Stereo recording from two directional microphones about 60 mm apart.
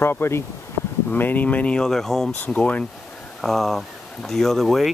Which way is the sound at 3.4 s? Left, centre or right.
Centre.